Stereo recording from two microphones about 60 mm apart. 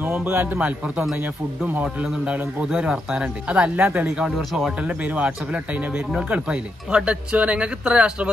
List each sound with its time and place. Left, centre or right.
0.0 s a man's voice: right
0.6 s speech: right
3.7 s speech: right